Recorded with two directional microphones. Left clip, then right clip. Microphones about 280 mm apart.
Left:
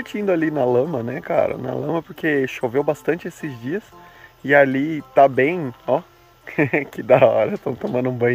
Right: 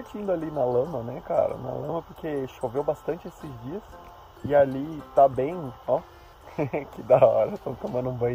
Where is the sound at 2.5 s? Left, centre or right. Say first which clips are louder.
Left 7 dB; left.